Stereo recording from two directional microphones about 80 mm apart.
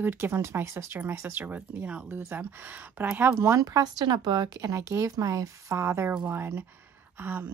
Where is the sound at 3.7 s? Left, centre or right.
Right.